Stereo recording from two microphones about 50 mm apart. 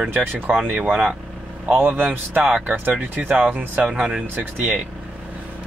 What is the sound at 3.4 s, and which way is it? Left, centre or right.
Speech, right.